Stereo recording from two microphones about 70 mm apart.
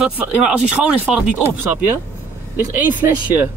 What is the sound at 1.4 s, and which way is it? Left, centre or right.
Speech, right.